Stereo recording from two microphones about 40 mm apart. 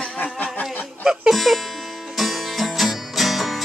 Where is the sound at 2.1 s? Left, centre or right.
Centre.